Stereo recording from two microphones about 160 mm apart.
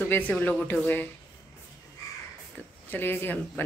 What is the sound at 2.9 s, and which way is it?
Speech, 15° left (ahead or behind).